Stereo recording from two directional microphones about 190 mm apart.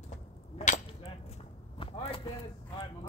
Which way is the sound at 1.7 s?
30° left (ahead or behind).